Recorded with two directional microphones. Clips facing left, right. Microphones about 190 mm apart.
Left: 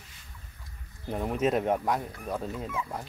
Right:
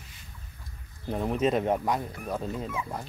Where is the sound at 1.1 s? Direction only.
5° left (ahead or behind).